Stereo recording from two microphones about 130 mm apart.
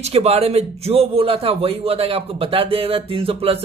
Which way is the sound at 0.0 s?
50° right (ahead or behind).